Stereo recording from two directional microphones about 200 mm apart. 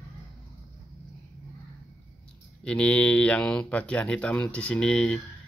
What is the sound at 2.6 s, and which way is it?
Speech, 5° left (ahead or behind).